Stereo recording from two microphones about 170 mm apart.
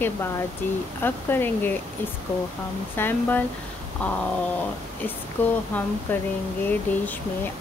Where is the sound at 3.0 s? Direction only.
10° left (ahead or behind).